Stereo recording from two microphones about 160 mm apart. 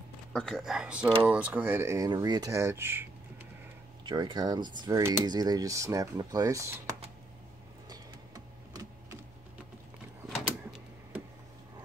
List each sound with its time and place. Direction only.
0.3 s speech: 5° left (ahead or behind); by 3.1 s 15° right (ahead or behind)
4.0 s speech: 30° right (ahead or behind)